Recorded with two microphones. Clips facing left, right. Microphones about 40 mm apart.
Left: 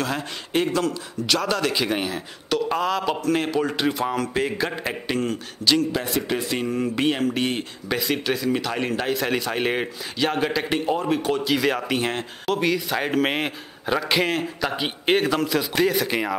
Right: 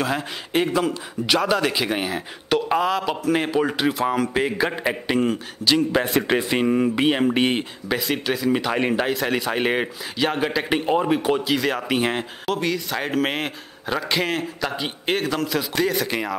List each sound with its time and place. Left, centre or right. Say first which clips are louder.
0.0 s a man's voice: right 2 dB; centre
2.9 s a man's voice: right 1 dB; centre
5.9 s a man's voice: right 4 dB; right
6.5 s a man's voice: right 5 dB; right
7.9 s a man's voice: even; centre
9.1 s a man's voice: right 1 dB; centre
11.5 s a man's voice: even; centre
12.5 s a man's voice: left 3 dB; centre